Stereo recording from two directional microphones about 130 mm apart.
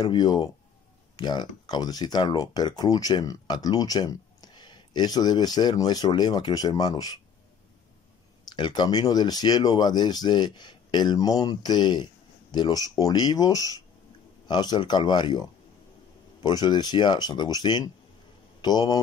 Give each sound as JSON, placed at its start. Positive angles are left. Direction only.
{"t": 0.0, "sound": "speech", "side_deg": 35}
{"t": 8.5, "sound": "speech", "side_deg": 35}
{"t": 16.4, "sound": "speech", "side_deg": 35}